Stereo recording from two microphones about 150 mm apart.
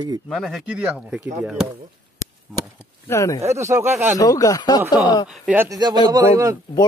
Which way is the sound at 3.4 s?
20° right (ahead or behind).